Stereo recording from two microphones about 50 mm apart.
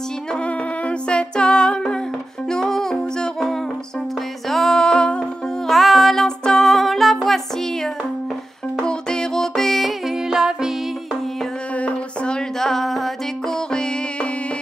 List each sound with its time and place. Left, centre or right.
0.3 s music: left
5.7 s music: centre
10.1 s music: centre
11.7 s music: left